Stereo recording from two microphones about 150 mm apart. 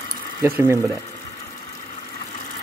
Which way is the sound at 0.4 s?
15° right (ahead or behind).